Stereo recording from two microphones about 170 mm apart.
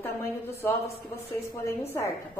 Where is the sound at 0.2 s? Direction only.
15° left (ahead or behind).